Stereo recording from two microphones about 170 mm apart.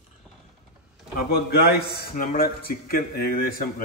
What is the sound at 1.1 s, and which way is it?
A man's voice, 70° left (ahead or behind).